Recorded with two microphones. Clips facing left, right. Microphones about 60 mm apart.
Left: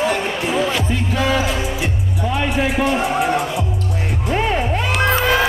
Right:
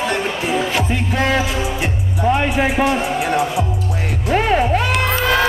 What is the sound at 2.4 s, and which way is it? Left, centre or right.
Speech, centre.